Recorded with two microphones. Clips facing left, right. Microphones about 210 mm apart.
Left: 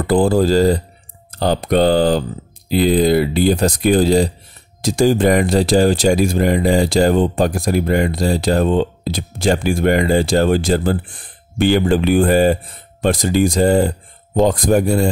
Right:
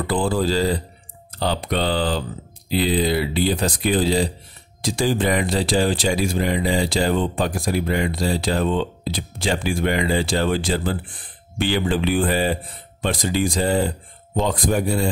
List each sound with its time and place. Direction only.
0.0 s speech: 45° left (ahead or behind)